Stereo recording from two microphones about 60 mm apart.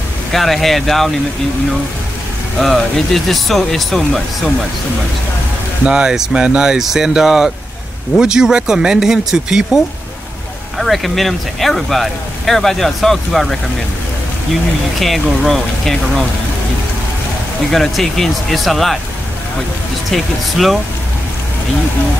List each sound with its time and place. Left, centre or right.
0.3 s speech: centre
2.6 s speech: centre
5.9 s speech: centre
10.8 s speech: centre
15.0 s speech: centre
17.6 s speech: centre
20.1 s speech: centre